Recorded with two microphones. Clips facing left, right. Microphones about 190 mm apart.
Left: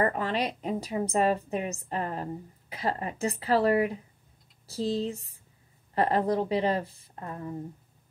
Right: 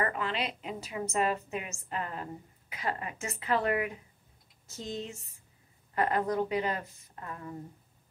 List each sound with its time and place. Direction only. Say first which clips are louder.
0.0 s a woman's voice: left 5 dB; 40° left (ahead or behind)